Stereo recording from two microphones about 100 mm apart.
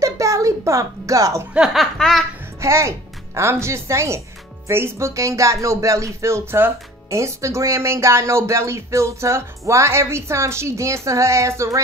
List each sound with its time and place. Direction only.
0.0 s music: 30° right (ahead or behind)
1.5 s speech: 5° right (ahead or behind)
2.6 s speech: 30° right (ahead or behind)